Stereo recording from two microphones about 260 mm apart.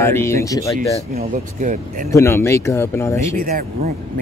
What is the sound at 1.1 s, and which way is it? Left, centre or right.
Speech, right.